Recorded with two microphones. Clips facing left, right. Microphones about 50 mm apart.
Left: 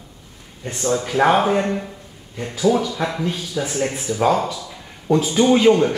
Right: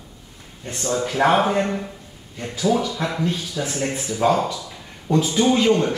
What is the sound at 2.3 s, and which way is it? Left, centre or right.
Speech, centre.